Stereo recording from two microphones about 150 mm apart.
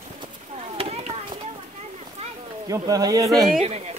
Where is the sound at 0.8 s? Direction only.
45° right (ahead or behind).